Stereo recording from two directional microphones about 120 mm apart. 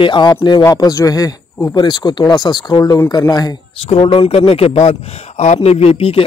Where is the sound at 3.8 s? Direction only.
50° left (ahead or behind).